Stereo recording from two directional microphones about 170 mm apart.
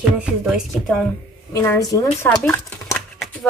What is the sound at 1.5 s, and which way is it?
Speech, 20° left (ahead or behind).